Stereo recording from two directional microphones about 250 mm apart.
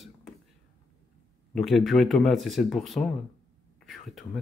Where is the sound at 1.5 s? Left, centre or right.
Centre.